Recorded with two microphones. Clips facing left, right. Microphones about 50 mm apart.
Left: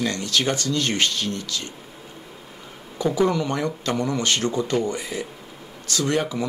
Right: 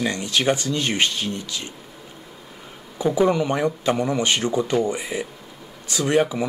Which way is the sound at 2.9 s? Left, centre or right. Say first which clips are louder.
Right 2 dB; centre.